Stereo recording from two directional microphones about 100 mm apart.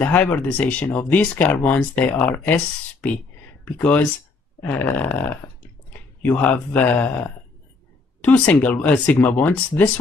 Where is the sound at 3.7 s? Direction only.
15° left (ahead or behind).